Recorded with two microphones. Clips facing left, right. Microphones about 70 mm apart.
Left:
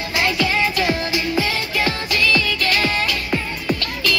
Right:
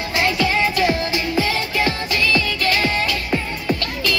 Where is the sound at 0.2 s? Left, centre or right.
Right.